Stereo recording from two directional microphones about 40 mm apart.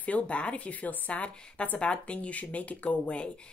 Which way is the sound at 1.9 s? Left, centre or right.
Left.